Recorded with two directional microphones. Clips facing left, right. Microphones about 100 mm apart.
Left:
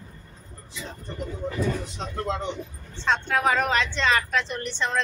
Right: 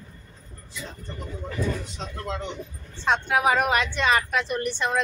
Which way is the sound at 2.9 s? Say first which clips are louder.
Right 1 dB; 15° right (ahead or behind).